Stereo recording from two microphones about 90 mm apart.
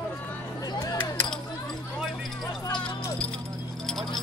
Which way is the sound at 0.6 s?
45° left (ahead or behind).